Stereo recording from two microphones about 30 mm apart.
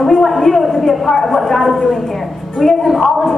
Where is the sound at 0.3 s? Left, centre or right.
Centre.